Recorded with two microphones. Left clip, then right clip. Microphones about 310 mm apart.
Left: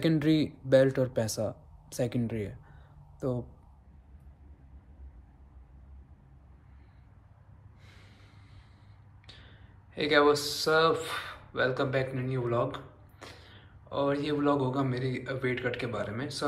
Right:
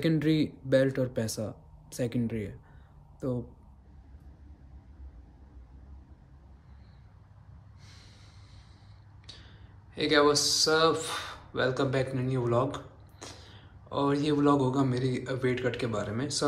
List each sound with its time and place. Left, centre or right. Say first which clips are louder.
0.0 s a man's voice: left 1 dB; centre
9.2 s speech: right 2 dB; centre